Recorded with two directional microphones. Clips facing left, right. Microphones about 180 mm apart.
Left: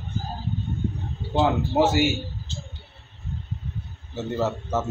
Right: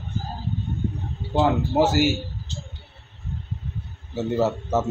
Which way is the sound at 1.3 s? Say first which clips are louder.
Right 1 dB; centre (ahead or behind).